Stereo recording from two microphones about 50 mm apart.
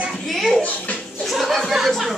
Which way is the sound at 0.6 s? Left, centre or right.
Left.